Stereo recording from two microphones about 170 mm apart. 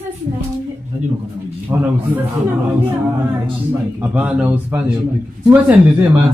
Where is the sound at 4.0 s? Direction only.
10° right (ahead or behind).